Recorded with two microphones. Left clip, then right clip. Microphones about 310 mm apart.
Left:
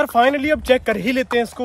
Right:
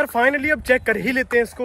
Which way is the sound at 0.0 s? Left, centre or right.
Centre.